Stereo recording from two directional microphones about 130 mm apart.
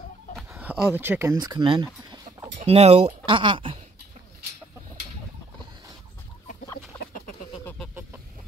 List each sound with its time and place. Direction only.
0.5 s a sound: 15° right (ahead or behind)
0.9 s speech: 15° right (ahead or behind)
1.4 s chicken: 35° right (ahead or behind)
2.6 s speech: 50° right (ahead or behind)
3.3 s speech: 40° right (ahead or behind)